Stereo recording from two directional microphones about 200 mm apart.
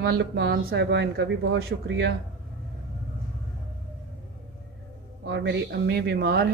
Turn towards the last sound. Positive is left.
turn(degrees=-50)  # may be behind; listen again after turning